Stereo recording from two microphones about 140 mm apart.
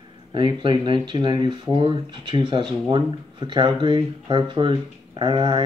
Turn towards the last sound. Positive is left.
turn(degrees=-35)  # may be behind; listen again after turning